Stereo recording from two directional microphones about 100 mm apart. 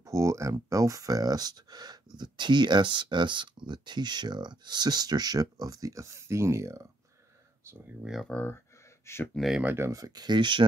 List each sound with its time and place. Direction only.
0.0 s speech: 30° right (ahead or behind)
8.0 s speech: 5° right (ahead or behind)
8.3 s speech: 20° left (ahead or behind)
9.3 s speech: centre (ahead or behind)
9.6 s speech: 20° right (ahead or behind)
9.8 s speech: 35° right (ahead or behind)